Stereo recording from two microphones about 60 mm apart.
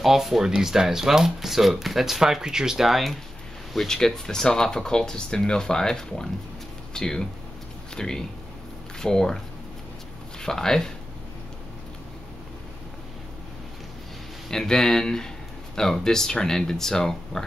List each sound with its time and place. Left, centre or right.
0.0 s speech: centre
10.4 s speech: centre
14.5 s speech: centre